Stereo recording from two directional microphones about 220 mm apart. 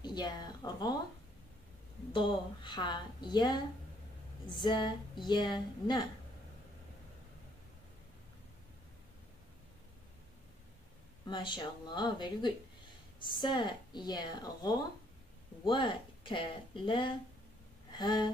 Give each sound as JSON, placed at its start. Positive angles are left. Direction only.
{"t": 0.0, "sound": "a woman's voice", "side_deg": 20}
{"t": 2.1, "sound": "a woman's voice", "side_deg": 20}
{"t": 11.2, "sound": "a woman's voice", "side_deg": 20}